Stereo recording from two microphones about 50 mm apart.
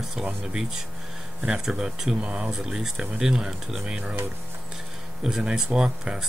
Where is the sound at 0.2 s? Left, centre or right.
Centre.